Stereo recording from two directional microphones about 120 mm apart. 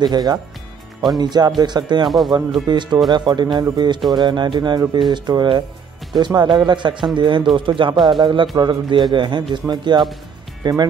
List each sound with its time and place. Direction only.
0.0 s speech: 35° right (ahead or behind)
2.0 s speech: centre (ahead or behind)
2.7 s speech: 40° right (ahead or behind)